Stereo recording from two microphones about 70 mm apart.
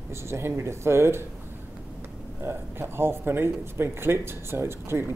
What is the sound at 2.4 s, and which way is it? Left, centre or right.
Speech, right.